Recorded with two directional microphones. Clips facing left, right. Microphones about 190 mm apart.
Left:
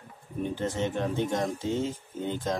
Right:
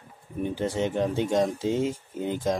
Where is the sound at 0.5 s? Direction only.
15° right (ahead or behind).